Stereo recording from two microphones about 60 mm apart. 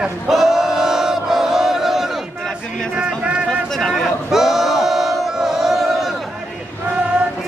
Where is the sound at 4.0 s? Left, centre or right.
Centre.